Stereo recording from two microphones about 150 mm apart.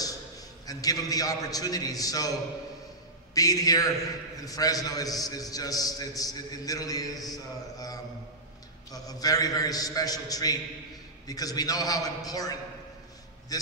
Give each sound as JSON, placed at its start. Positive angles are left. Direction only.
{"t": 0.7, "sound": "a man's voice", "side_deg": 25}
{"t": 3.3, "sound": "a man's voice", "side_deg": 25}
{"t": 8.9, "sound": "a man's voice", "side_deg": 25}